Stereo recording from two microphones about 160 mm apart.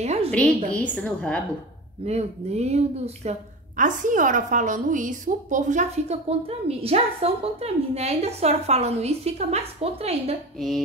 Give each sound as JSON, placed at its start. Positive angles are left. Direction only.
{"t": 0.0, "sound": "a sound", "side_deg": -45}
{"t": 0.7, "sound": "a woman's voice", "side_deg": 10}
{"t": 2.0, "sound": "speech", "side_deg": -40}
{"t": 3.3, "sound": "a woman's voice", "side_deg": -55}